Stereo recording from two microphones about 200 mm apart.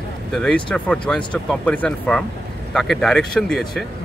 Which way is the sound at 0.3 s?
5° left (ahead or behind).